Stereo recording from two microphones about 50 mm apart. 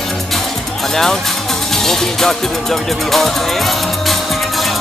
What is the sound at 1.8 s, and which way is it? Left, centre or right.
Music, centre.